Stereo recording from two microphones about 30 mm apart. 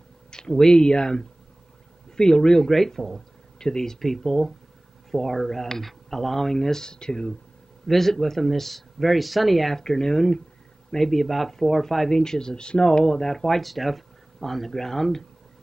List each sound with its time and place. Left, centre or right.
0.3 s speech: left
2.6 s speech: centre
4.0 s speech: centre; by 7.3 s left
7.8 s speech: centre
10.9 s speech: centre
12.2 s speech: left
13.3 s speech: centre
13.7 s speech: centre